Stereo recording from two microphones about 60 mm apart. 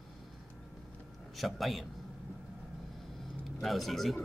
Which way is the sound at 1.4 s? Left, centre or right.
Centre.